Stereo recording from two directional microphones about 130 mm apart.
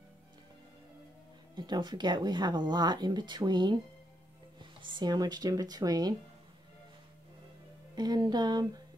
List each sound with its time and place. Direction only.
1.5 s speech: 35° right (ahead or behind)
7.9 s speech: 30° right (ahead or behind)